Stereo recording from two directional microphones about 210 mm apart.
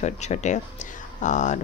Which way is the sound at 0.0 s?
35° left (ahead or behind).